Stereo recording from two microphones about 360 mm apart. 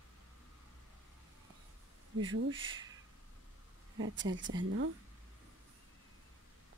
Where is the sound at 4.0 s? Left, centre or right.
Right.